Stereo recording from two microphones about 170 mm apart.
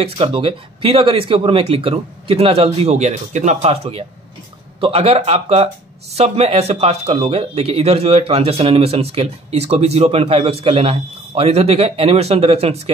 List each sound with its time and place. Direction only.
0.0 s speech: 35° right (ahead or behind)